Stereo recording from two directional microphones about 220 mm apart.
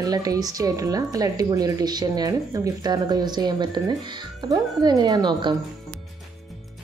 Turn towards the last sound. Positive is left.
turn(degrees=-20)  # may be behind; listen again after turning